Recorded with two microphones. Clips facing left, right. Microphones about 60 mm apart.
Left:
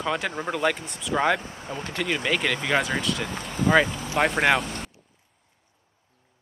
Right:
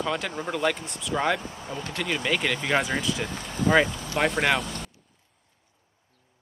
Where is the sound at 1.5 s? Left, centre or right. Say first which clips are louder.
Left 1 dB; left.